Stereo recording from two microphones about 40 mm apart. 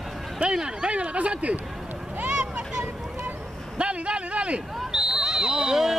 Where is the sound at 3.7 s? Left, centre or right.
Right.